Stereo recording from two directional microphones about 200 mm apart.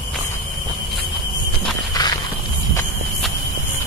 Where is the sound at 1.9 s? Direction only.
20° left (ahead or behind).